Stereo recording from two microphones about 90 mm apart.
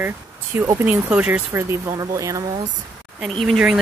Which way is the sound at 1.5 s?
35° right (ahead or behind).